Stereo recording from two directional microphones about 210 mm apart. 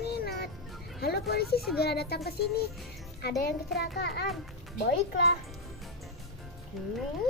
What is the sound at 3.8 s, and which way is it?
Speech, 50° left (ahead or behind).